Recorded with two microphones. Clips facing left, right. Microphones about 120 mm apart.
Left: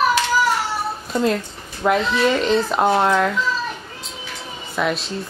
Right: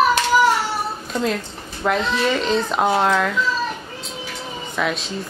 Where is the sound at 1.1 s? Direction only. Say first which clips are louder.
Left 4 dB; centre (ahead or behind).